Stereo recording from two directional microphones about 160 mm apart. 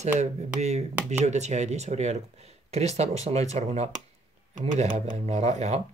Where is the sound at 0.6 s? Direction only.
45° right (ahead or behind).